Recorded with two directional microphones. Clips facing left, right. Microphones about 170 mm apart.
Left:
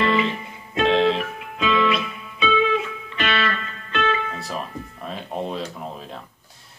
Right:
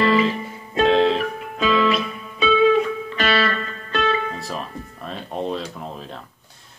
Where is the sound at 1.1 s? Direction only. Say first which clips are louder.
Right 4 dB; 40° right (ahead or behind).